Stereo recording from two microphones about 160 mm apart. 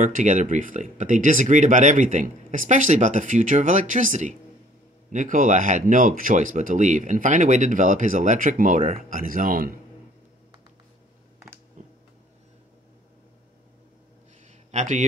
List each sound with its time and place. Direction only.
0.0 s speech: 50° right (ahead or behind)
11.8 s a sound: 50° right (ahead or behind)
14.7 s a man's voice: 50° right (ahead or behind)